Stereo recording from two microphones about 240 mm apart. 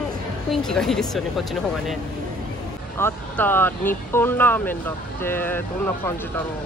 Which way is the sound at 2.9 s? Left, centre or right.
Centre.